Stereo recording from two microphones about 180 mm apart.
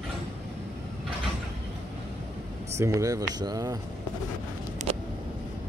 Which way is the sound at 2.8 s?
20° right (ahead or behind).